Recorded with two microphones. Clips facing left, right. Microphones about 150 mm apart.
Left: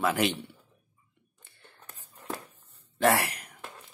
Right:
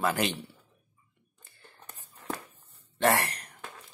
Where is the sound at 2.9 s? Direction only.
Centre (ahead or behind).